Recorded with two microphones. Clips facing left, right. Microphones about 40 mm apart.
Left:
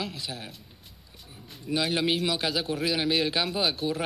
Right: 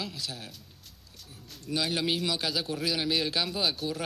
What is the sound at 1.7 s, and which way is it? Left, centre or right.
Speech, centre.